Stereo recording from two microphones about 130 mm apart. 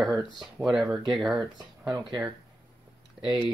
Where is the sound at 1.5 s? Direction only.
30° right (ahead or behind).